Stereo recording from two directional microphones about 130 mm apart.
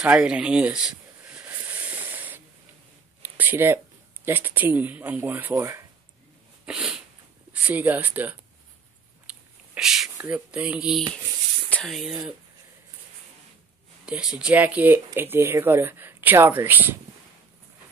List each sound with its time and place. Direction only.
0.0 s a sound: 10° right (ahead or behind)
3.2 s speech: 15° right (ahead or behind)
6.6 s sneeze: 10° right (ahead or behind)
7.6 s speech: 10° right (ahead or behind)
9.3 s biting: 5° right (ahead or behind)
10.1 s speech: 15° right (ahead or behind)
11.7 s speech: 5° left (ahead or behind)
14.0 s speech: 5° right (ahead or behind)